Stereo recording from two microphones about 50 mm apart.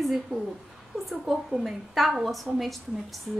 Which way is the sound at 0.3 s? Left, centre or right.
Right.